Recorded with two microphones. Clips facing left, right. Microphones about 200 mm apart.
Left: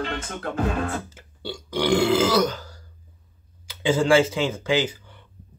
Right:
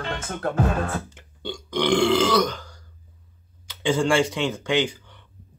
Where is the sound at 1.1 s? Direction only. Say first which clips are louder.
Right 1 dB; 5° left (ahead or behind).